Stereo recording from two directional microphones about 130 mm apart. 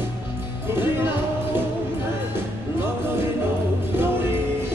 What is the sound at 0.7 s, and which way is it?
Music, 15° right (ahead or behind).